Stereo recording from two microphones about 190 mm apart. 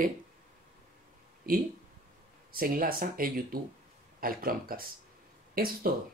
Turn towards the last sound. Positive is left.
turn(degrees=-50)  # may be behind; listen again after turning